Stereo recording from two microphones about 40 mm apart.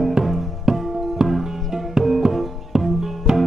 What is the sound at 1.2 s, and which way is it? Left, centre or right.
Music, centre.